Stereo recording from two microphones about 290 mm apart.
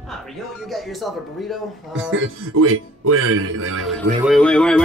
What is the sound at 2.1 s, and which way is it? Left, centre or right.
Speech, right.